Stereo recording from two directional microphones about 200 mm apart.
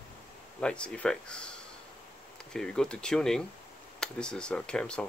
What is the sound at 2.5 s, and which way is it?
Speech, 5° left (ahead or behind).